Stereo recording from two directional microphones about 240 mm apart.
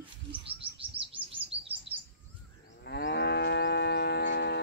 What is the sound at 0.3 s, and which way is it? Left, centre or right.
Chirp, right.